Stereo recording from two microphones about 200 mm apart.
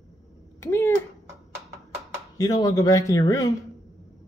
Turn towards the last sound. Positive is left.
turn(degrees=15)  # may be behind; listen again after turning